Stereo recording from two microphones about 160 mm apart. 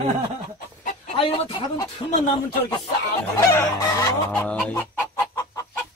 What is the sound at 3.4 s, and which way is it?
Chicken, 20° left (ahead or behind).